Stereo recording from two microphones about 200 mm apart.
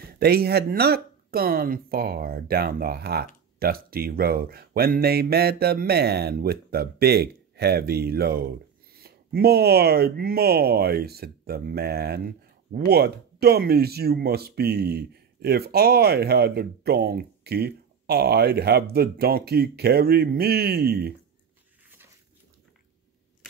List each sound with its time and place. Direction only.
0.0 s speech: 50° right (ahead or behind)